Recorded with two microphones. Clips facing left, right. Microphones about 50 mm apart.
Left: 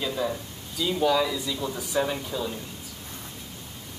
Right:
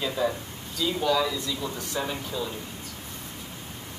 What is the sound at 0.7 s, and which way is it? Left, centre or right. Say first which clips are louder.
Speech: left 2 dB; centre.